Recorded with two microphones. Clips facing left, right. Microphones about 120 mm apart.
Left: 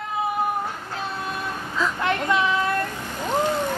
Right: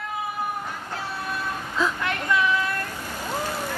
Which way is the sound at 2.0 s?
25° left (ahead or behind).